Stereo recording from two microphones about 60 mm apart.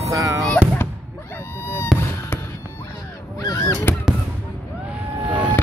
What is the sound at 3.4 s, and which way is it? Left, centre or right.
Crow, left.